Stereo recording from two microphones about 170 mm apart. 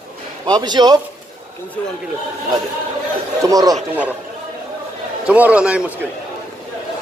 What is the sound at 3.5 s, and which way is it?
Speech, 20° right (ahead or behind).